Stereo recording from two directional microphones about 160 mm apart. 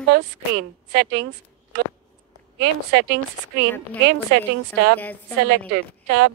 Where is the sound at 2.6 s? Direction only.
85° right.